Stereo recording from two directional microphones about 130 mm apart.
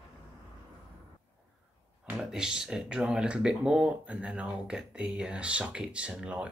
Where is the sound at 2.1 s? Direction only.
5° right (ahead or behind).